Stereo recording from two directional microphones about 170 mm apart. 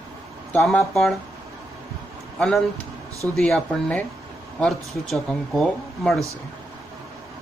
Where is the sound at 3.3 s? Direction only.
5° left (ahead or behind).